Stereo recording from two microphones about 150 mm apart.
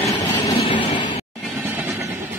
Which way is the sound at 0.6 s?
35° left (ahead or behind).